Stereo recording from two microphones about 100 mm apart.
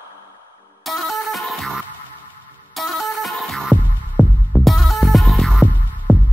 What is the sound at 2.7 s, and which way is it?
Music, centre (ahead or behind).